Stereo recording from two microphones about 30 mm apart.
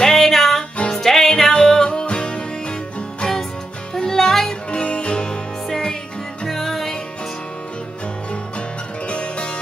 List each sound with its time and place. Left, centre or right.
0.0 s music: centre
0.7 s music: left
1.0 s music: centre
1.5 s music: left
1.9 s music: left
3.9 s music: centre
4.5 s music: left
6.5 s music: centre
8.3 s music: left